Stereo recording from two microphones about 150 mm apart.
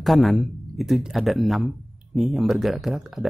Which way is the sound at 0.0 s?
Centre (ahead or behind).